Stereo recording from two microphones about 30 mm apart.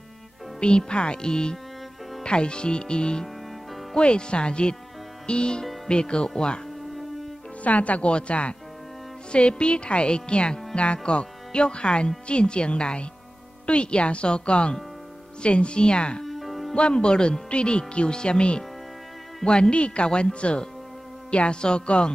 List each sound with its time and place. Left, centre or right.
0.6 s speech: left
7.6 s speech: left
8.1 s speech: left
16.3 s music: centre
16.7 s speech: left